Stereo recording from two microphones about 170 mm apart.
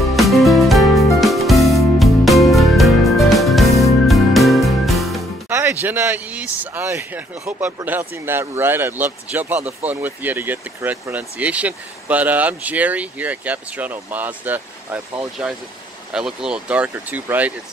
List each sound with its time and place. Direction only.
0.1 s music: centre (ahead or behind)
5.5 s speech: 10° right (ahead or behind)